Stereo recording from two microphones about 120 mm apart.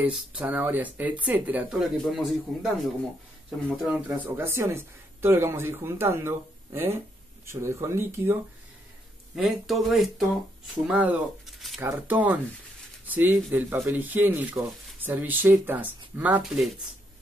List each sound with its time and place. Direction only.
0.0 s speech: 10° right (ahead or behind)
1.8 s speech: centre (ahead or behind)
4.2 s speech: 20° right (ahead or behind)
9.3 s speech: 5° right (ahead or behind)
11.4 s a sound: centre (ahead or behind)
11.8 s speech: 15° right (ahead or behind)
16.4 s speech: centre (ahead or behind)